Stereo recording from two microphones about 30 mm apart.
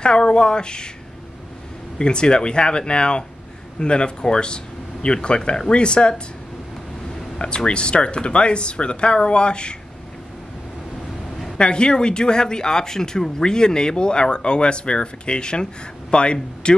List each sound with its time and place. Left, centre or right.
0.0 s speech: left
2.0 s speech: left
7.3 s speech: left
11.5 s speech: left